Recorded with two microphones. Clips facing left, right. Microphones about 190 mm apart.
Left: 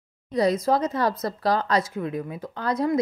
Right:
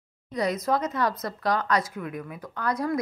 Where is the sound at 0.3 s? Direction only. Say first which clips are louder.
Left 4 dB; 30° left (ahead or behind).